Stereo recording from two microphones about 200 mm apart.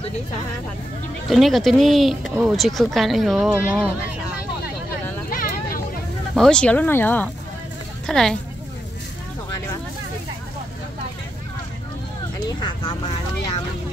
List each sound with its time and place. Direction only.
1.3 s speech: centre (ahead or behind)
6.3 s speech: 5° left (ahead or behind)
12.4 s speech: 20° left (ahead or behind)